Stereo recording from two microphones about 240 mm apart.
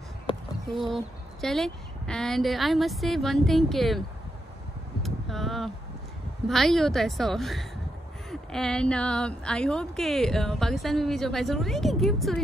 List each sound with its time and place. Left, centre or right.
0.7 s speech: centre
5.0 s a sound: centre
6.4 s speech: centre